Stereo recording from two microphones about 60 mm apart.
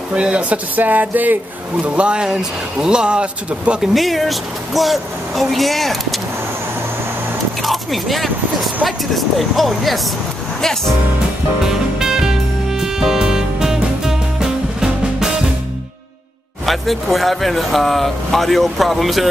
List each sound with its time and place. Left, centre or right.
0.1 s speech: right
3.8 s speech: centre
7.6 s speech: centre
11.6 s music: centre
16.6 s speech: centre